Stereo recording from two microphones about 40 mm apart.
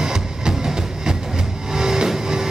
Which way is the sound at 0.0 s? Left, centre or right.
Centre.